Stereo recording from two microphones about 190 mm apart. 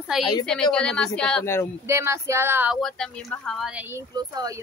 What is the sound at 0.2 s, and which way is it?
Speech, 20° left (ahead or behind).